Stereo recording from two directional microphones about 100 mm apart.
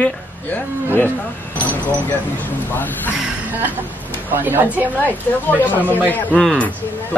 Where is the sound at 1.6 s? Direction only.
15° left (ahead or behind).